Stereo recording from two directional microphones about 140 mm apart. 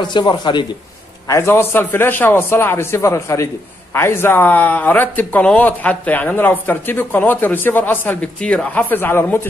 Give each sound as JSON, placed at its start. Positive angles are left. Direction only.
{"t": 0.0, "sound": "speech", "side_deg": 35}
{"t": 1.2, "sound": "speech", "side_deg": 20}